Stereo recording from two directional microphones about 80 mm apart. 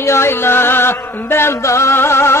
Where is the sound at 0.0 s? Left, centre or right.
Left.